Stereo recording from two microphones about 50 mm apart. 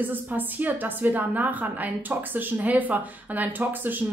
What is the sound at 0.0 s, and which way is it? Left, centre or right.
A woman's voice, right.